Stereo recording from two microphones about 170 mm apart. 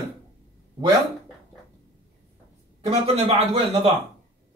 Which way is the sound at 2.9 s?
35° right (ahead or behind).